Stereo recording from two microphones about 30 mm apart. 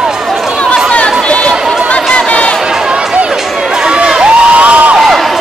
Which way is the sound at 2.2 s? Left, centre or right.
Left.